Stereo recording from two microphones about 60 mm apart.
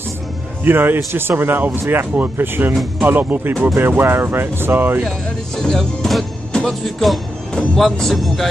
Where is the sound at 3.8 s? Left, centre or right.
Right.